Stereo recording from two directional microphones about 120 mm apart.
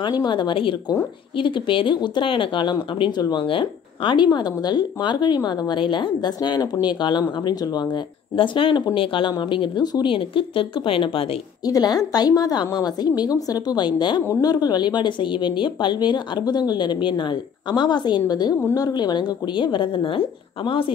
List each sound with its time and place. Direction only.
0.0 s speech: 40° left (ahead or behind)
11.6 s speech: 35° left (ahead or behind)